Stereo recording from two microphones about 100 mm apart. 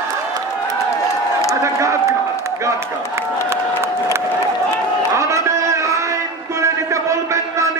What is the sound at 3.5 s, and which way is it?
Applause, 25° right (ahead or behind).